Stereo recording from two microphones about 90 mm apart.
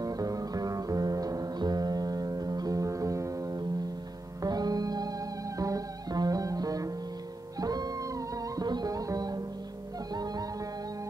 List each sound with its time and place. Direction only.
0.0 s music: 40° right (ahead or behind)